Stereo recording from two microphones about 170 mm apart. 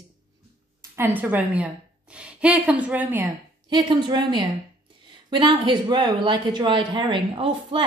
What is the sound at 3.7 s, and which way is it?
Speech, 25° right (ahead or behind).